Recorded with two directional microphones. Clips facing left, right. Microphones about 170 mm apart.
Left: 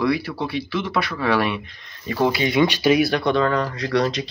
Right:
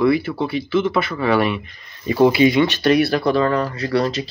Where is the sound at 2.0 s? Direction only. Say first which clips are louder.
Right 7 dB; 15° right (ahead or behind).